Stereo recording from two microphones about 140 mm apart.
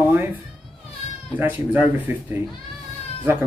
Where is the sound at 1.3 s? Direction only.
10° right (ahead or behind).